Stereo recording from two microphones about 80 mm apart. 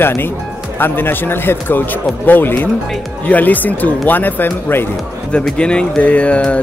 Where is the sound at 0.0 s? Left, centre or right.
Left.